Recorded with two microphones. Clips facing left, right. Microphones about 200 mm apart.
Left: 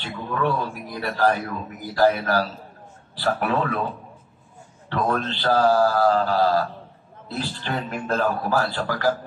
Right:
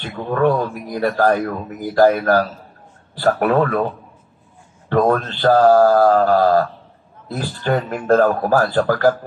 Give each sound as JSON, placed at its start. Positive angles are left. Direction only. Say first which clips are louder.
{"t": 0.0, "sound": "a man's voice", "louder": "right 7 dB", "side_deg": -50}
{"t": 4.8, "sound": "a man's voice", "louder": "right 8 dB", "side_deg": -50}